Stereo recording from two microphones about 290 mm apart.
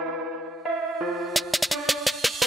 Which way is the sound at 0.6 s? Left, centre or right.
Centre.